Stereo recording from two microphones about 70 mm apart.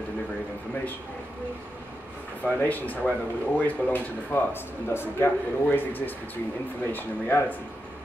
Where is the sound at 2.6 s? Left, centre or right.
Left.